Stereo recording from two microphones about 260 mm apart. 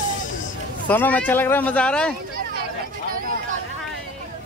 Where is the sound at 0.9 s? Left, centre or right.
Centre.